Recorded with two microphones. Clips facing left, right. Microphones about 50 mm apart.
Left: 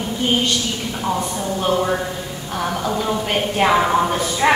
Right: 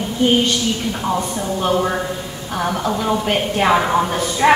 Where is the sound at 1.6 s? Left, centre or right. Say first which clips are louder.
Right 1 dB; centre.